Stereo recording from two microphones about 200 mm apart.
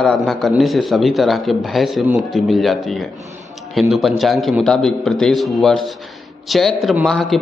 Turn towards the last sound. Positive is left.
turn(degrees=0)  # may be behind; listen again after turning